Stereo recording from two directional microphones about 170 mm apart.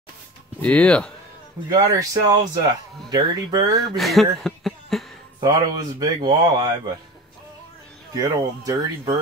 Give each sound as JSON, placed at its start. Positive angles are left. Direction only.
{"t": 0.6, "sound": "speech", "side_deg": 5}
{"t": 1.7, "sound": "speech", "side_deg": -20}
{"t": 3.8, "sound": "speech", "side_deg": 0}
{"t": 5.4, "sound": "speech", "side_deg": -25}
{"t": 8.2, "sound": "speech", "side_deg": -20}